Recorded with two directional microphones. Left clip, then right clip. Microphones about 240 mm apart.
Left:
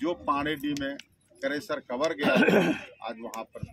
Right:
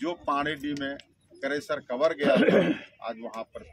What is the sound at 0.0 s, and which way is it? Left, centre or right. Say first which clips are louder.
Speech: even; centre.